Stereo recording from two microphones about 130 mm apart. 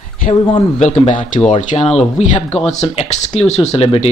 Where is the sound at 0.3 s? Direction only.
40° left (ahead or behind).